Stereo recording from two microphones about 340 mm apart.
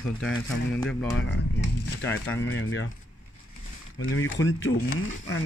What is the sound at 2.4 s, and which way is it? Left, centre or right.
Speech, left.